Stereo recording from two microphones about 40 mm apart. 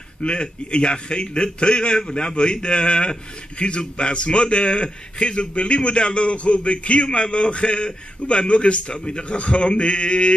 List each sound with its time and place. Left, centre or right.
0.2 s a man's voice: left